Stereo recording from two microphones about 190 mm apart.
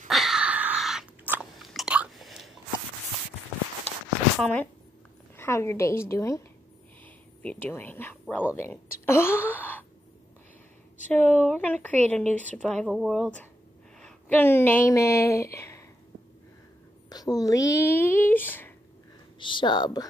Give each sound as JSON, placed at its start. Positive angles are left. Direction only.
{"t": 0.1, "sound": "chewing", "side_deg": 0}
{"t": 4.4, "sound": "speech", "side_deg": 10}
{"t": 7.4, "sound": "speech", "side_deg": 10}
{"t": 9.0, "sound": "a sound", "side_deg": 10}
{"t": 11.1, "sound": "speech", "side_deg": 10}
{"t": 17.1, "sound": "speech", "side_deg": 20}
{"t": 19.4, "sound": "speech", "side_deg": 25}